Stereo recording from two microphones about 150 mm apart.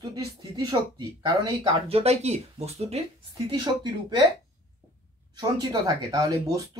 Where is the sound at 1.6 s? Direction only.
45° right (ahead or behind).